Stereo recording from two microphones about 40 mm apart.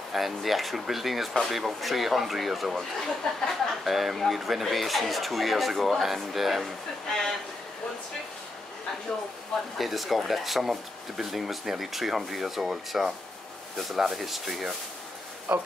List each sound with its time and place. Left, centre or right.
0.1 s speech: centre
7.1 s speech: centre
9.8 s speech: centre
15.5 s speech: right